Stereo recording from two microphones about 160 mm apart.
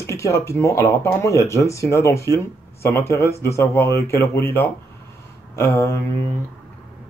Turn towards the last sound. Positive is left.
turn(degrees=15)  # may be behind; listen again after turning